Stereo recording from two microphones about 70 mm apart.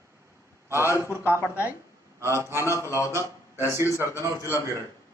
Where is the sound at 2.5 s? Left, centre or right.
Left.